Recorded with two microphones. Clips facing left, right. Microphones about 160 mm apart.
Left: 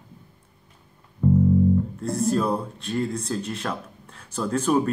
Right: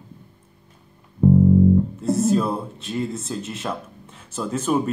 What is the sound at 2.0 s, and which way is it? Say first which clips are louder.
Speech: right 2 dB; centre (ahead or behind).